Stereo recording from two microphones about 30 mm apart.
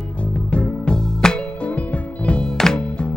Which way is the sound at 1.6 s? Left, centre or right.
Left.